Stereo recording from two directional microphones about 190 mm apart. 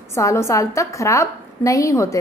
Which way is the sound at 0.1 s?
15° left (ahead or behind).